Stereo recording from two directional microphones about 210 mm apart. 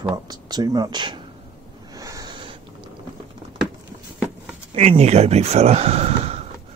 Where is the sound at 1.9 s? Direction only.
15° right (ahead or behind).